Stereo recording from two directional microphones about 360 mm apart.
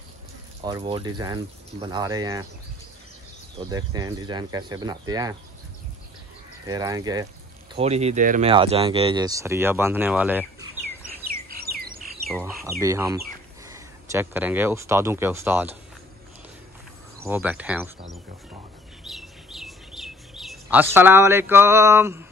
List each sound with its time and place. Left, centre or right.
0.7 s speech: centre
3.5 s speech: centre
6.7 s speech: centre
11.5 s bird: right
12.3 s speech: centre
17.2 s speech: centre
19.0 s bird vocalization: centre